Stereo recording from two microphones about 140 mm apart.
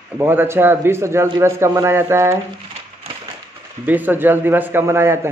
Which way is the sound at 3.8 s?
15° right (ahead or behind).